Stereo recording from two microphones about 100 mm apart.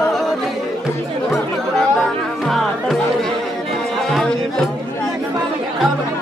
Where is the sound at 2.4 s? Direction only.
Centre (ahead or behind).